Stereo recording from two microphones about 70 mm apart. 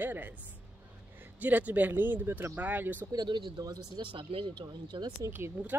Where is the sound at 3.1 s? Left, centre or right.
Right.